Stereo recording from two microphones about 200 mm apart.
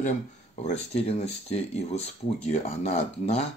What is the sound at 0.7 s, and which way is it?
Speech, 30° left (ahead or behind).